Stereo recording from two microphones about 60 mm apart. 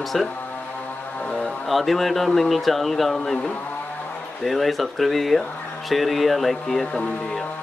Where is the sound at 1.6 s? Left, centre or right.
Centre.